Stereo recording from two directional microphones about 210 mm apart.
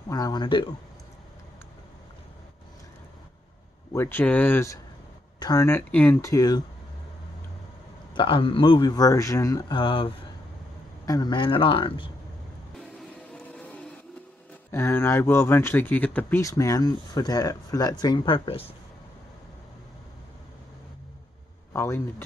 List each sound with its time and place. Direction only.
0.1 s a man's voice: 20° left (ahead or behind)
3.9 s speech: 10° left (ahead or behind)
8.1 s a man's voice: 25° left (ahead or behind)
13.3 s music: 5° left (ahead or behind)
14.7 s speech: 10° left (ahead or behind); by 18.8 s 25° left (ahead or behind)
21.7 s speech: 10° left (ahead or behind)